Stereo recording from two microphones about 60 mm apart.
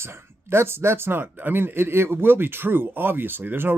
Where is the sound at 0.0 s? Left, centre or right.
Right.